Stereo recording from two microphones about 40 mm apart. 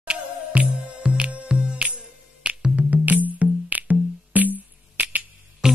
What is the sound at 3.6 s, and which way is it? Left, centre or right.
Music, right.